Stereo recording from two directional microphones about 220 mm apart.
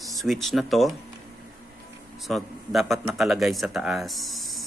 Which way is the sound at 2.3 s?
Centre (ahead or behind).